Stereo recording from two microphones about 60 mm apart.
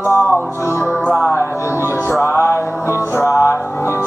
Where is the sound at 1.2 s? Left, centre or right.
Left.